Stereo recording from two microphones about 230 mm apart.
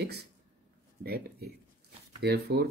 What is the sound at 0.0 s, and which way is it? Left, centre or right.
Speech, right.